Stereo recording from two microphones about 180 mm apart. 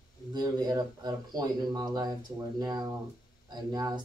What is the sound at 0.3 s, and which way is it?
Speech, 20° right (ahead or behind).